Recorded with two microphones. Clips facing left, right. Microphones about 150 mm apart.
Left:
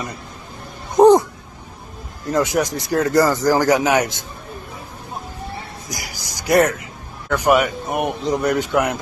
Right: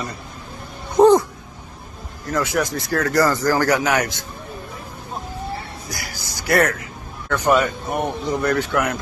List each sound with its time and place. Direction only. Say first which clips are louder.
0.9 s speech: left 2 dB; 15° left (ahead or behind)
2.3 s speech: left 3 dB; 20° left (ahead or behind)
5.9 s speech: even; 15° left (ahead or behind)